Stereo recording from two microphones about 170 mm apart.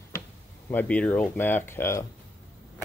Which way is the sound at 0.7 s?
10° left (ahead or behind).